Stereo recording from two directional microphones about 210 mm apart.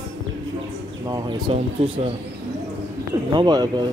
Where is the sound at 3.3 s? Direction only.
20° right (ahead or behind).